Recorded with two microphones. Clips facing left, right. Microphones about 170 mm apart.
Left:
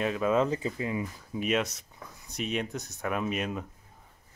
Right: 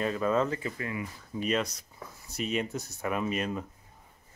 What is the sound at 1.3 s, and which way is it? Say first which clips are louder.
Speech: left 1 dB; 5° left (ahead or behind).